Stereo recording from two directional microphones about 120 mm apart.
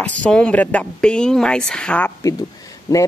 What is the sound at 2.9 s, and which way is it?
Speech, 25° left (ahead or behind).